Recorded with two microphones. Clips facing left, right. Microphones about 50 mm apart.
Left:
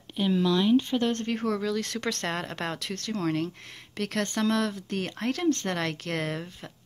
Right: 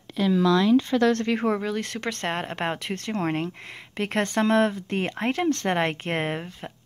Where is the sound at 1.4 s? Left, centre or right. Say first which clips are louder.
Right 3 dB; right.